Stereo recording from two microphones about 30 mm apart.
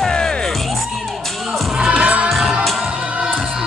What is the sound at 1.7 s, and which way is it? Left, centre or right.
Music, right.